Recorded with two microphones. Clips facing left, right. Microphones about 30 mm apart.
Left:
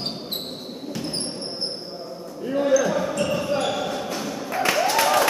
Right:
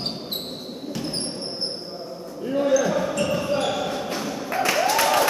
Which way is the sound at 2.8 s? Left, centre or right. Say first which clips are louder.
Even; centre.